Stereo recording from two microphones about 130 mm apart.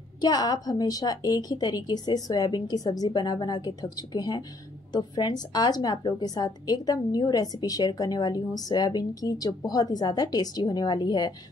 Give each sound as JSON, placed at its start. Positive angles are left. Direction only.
{"t": 0.2, "sound": "a woman's voice", "side_deg": 30}